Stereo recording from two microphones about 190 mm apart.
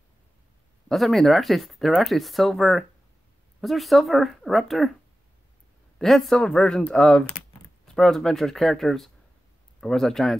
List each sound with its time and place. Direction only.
0.8 s speech: centre (ahead or behind)
5.9 s speech: centre (ahead or behind)